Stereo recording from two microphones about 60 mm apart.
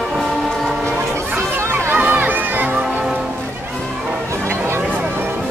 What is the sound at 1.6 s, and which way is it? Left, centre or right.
Crowd, right.